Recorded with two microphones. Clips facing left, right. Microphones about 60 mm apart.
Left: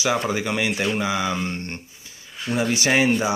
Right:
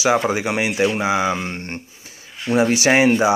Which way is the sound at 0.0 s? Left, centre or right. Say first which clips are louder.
Right 5 dB; centre.